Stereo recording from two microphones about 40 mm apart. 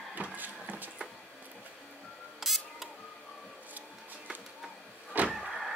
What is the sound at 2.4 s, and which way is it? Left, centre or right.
Camera, centre.